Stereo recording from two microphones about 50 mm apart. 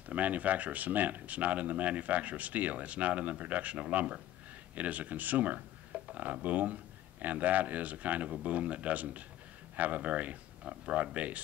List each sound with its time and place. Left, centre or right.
0.1 s speech: right
6.0 s a sound: right
6.4 s speech: right